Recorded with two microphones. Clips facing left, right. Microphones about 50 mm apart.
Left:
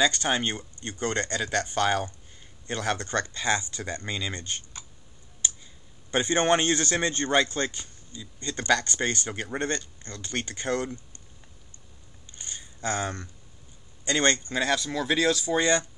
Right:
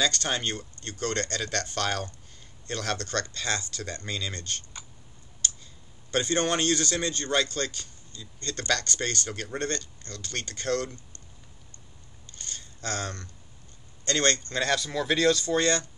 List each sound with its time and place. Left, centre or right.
0.0 s a man's voice: centre
5.4 s a sound: centre
6.1 s a man's voice: left
12.3 s a sound: centre
14.0 s a man's voice: centre
14.6 s speech: centre